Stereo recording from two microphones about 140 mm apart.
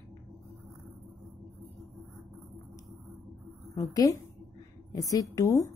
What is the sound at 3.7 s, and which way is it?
A woman's voice, 25° left (ahead or behind).